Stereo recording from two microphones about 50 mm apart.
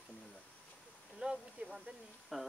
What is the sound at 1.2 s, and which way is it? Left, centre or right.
Speech, right.